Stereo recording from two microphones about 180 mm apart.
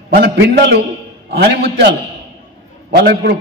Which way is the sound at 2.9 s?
65° right (ahead or behind).